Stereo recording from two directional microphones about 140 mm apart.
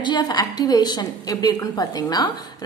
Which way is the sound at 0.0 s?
30° left (ahead or behind).